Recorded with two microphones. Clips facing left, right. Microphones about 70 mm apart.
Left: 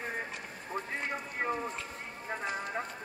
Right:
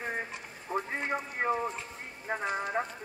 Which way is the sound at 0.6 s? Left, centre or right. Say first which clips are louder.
Right 4 dB; centre.